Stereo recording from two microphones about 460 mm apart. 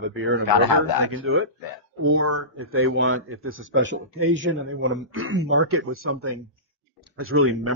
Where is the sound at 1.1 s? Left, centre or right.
Right.